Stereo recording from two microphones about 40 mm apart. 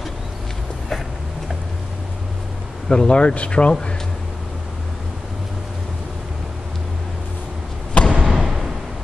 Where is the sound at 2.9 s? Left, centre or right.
Left.